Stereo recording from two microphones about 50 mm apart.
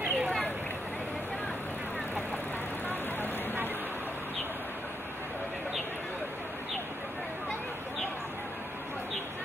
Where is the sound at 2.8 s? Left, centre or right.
Left.